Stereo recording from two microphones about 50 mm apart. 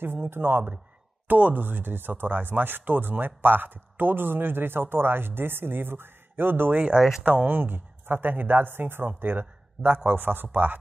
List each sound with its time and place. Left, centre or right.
0.0 s speech: right
1.2 s speech: right
7.0 s speech: centre
7.2 s speech: right